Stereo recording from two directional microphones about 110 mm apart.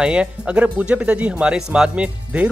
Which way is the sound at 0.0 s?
10° right (ahead or behind).